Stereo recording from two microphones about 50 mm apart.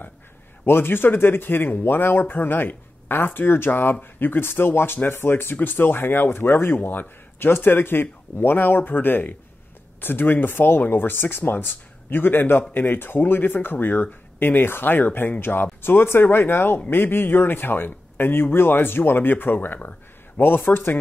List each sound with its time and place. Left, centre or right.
0.7 s speech: left